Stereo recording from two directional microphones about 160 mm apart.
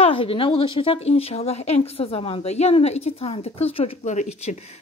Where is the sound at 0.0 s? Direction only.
35° left (ahead or behind).